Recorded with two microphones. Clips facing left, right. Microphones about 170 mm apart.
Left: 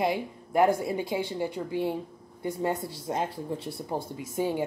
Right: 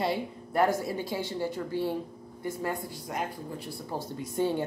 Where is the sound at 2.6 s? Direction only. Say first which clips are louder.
Left 5 dB; 25° left (ahead or behind).